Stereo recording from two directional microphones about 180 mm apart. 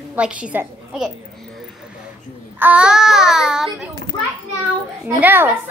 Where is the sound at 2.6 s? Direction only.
5° right (ahead or behind).